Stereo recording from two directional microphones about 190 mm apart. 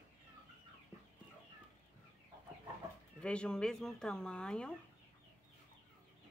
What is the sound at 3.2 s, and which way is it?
Speech, 5° left (ahead or behind).